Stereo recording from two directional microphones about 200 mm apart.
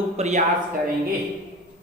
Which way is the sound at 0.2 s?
35° right (ahead or behind).